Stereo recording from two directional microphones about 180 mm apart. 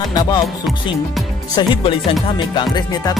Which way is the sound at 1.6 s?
25° left (ahead or behind).